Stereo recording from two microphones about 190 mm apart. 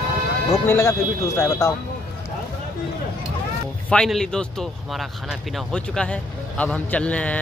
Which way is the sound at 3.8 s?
5° left (ahead or behind).